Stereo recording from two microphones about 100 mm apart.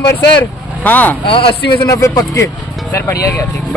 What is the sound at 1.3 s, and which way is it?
Speech, 60° left (ahead or behind).